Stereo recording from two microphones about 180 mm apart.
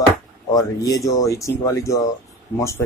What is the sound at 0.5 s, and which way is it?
Speech, 20° left (ahead or behind).